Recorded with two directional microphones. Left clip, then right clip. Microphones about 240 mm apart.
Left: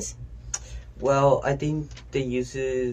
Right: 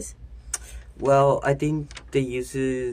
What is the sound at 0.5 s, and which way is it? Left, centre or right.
Speech, right.